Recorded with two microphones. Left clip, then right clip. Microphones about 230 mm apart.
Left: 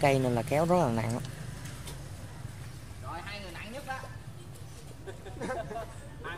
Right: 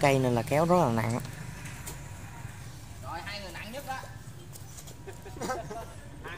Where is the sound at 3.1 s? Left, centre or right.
Right.